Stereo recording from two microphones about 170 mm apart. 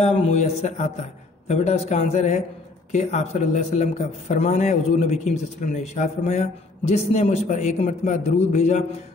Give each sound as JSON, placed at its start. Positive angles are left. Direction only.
{"t": 0.0, "sound": "a man's voice", "side_deg": 40}